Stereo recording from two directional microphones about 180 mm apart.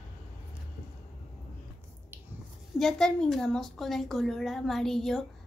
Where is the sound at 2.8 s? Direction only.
Centre (ahead or behind).